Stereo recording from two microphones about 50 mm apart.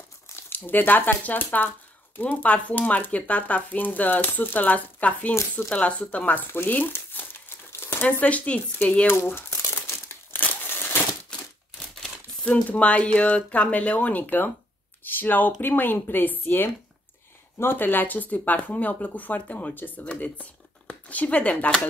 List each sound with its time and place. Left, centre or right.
0.5 s speech: left
9.0 s speech: left
9.5 s crumpling: left
10.3 s crumpling: left
12.4 s speech: left